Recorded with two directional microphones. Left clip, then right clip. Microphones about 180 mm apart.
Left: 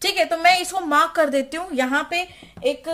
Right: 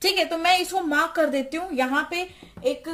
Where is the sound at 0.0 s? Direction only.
35° left (ahead or behind); by 2.9 s 50° left (ahead or behind).